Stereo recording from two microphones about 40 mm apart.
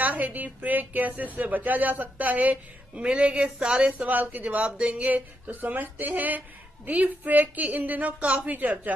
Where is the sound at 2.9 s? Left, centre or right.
Right.